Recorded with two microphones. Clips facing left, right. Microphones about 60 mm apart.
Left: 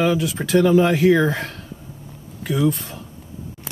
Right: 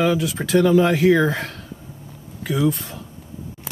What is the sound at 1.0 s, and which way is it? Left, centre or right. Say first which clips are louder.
Speech: even; centre.